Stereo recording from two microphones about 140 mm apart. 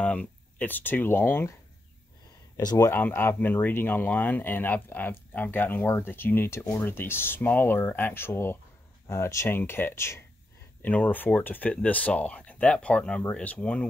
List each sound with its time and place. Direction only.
0.0 s speech: 10° left (ahead or behind)
2.5 s speech: 25° left (ahead or behind)
2.9 s speech: 15° left (ahead or behind)